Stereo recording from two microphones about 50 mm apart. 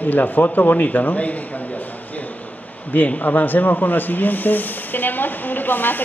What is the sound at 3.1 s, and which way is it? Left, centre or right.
A man's voice, left.